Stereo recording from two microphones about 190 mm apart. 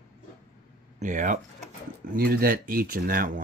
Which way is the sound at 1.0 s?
40° right (ahead or behind).